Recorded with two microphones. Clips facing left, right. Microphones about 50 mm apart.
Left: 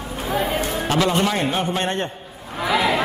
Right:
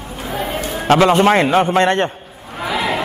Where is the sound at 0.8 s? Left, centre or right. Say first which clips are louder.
Right 10 dB; right.